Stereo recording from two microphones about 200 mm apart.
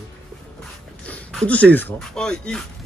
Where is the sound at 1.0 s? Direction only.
5° left (ahead or behind).